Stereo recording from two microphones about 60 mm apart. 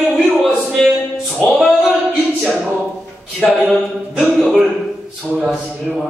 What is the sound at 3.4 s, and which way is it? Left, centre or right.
Speech, centre.